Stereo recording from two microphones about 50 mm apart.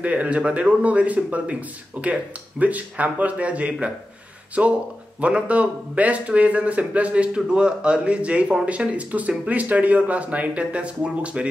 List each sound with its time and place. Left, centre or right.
0.0 s speech: right
7.3 s speech: centre